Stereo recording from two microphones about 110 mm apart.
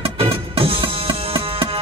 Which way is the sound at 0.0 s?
60° right (ahead or behind).